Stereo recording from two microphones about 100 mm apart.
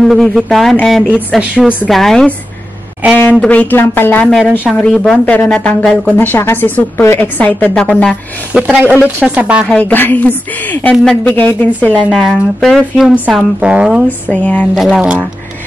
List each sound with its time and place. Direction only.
0.0 s speech: centre (ahead or behind)
1.5 s speech: 10° right (ahead or behind)
1.9 s speech: 5° left (ahead or behind)
3.2 s a woman's voice: 15° left (ahead or behind)
4.3 s a woman's voice: 5° left (ahead or behind)
8.5 s speech: 15° right (ahead or behind)
9.7 s a woman's voice: 10° left (ahead or behind)
12.1 s speech: centre (ahead or behind)
13.3 s speech: 10° right (ahead or behind)
14.3 s a woman's voice: 15° left (ahead or behind)
14.8 s speech: 10° right (ahead or behind)